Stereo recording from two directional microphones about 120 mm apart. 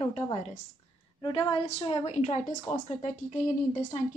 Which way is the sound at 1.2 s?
35° left (ahead or behind).